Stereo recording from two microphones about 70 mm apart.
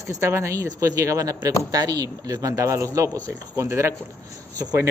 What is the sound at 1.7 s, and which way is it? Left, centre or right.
A man's voice, right.